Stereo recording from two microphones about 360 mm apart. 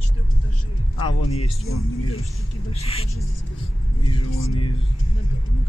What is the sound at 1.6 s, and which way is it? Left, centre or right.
Speech, left.